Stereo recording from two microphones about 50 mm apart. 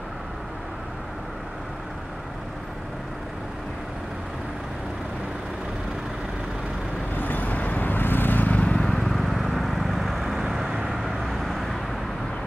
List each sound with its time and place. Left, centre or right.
7.2 s vehicle: left
8.7 s vehicle: centre
9.0 s vehicle: centre